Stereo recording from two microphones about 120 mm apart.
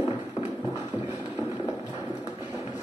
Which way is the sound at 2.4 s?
20° right (ahead or behind).